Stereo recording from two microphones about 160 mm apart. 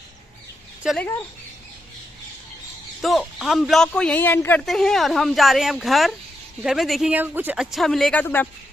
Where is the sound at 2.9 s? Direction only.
Centre (ahead or behind).